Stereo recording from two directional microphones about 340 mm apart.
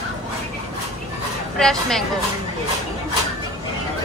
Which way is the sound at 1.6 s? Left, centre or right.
Centre.